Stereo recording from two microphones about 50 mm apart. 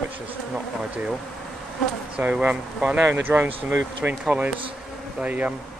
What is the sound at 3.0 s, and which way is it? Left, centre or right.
Speech, right.